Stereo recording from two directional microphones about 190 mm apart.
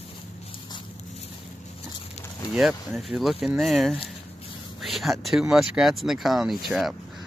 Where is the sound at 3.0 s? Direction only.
Centre (ahead or behind).